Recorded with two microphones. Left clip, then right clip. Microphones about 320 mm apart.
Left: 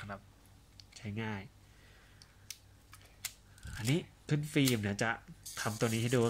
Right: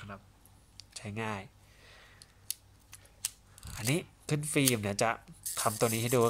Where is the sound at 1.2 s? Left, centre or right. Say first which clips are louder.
Right 5 dB; centre.